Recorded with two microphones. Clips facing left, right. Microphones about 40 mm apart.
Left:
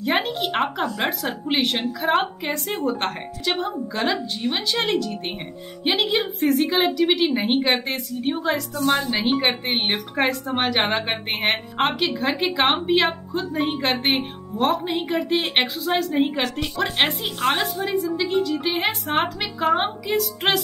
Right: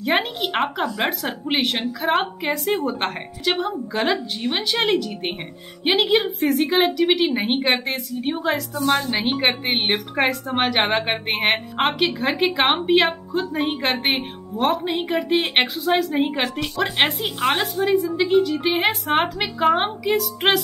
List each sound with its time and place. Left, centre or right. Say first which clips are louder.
0.2 s a woman's voice: even; centre
17.5 s speech: right 3 dB; centre